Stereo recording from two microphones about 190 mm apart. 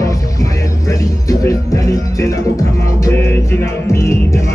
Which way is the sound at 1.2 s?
15° left (ahead or behind).